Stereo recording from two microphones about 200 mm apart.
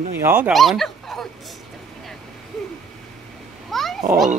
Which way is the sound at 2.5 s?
Centre (ahead or behind).